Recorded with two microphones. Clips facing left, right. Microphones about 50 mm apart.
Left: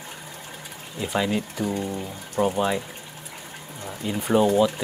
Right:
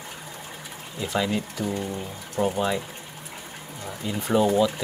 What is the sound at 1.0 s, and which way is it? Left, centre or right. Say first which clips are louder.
Speech: left 1 dB; centre.